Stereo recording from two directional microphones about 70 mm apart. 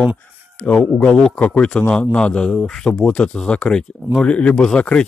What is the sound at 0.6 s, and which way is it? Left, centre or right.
A man's voice, centre.